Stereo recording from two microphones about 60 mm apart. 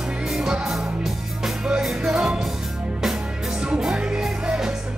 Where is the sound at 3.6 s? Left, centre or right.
Centre.